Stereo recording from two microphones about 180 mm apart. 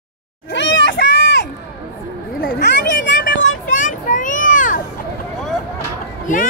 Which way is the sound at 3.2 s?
50° left (ahead or behind).